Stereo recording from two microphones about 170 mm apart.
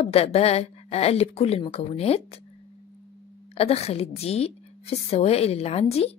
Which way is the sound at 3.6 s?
35° left (ahead or behind).